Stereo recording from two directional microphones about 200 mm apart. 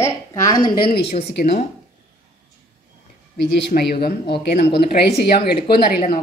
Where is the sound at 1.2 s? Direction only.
55° left (ahead or behind).